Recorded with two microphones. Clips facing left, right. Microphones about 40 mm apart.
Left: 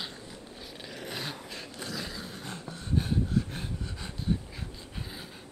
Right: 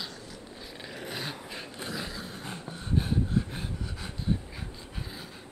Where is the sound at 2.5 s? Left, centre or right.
Right.